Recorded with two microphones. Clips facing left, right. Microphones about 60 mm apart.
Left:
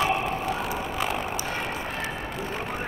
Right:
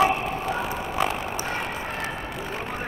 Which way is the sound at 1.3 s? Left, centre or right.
Right.